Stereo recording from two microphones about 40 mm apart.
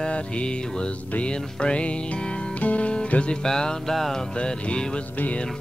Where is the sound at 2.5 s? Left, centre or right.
Left.